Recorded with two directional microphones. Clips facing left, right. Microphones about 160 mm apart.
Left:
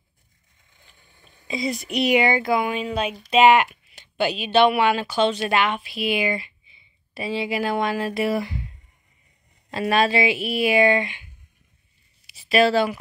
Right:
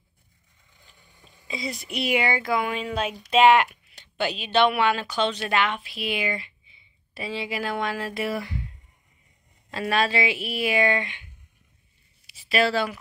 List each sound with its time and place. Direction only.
1.5 s speech: 15° left (ahead or behind)
2.6 s speech: 5° left (ahead or behind)
9.7 s speech: 15° left (ahead or behind)
12.3 s speech: 15° left (ahead or behind)